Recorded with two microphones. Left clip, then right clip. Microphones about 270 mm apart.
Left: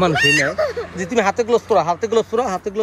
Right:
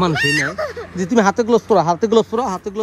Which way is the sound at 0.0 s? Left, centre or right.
Centre.